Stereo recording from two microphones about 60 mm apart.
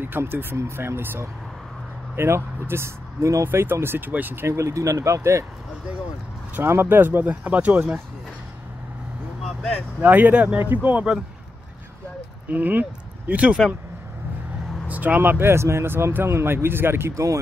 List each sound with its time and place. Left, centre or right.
0.2 s speech: right
4.5 s speech: right
6.7 s speech: right
9.9 s speech: right
12.4 s speech: right
14.9 s speech: right
17.1 s speech: right